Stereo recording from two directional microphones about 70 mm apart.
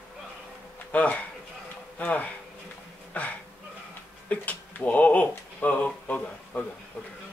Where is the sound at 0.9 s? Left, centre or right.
Left.